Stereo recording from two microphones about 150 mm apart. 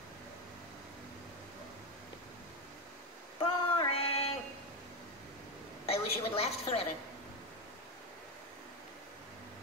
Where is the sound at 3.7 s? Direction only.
40° left (ahead or behind).